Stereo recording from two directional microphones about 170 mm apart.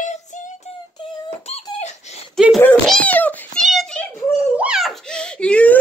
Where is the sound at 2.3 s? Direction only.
Centre (ahead or behind).